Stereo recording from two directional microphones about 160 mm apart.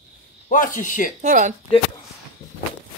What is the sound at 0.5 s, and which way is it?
Speech, 55° left (ahead or behind).